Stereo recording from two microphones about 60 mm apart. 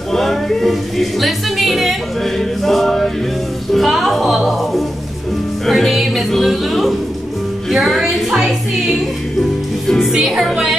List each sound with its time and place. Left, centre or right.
0.1 s music: centre
7.7 s a sound: centre
9.4 s music: centre